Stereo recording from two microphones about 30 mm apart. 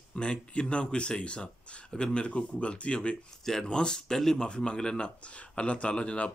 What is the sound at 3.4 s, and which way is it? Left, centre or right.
Speech, centre.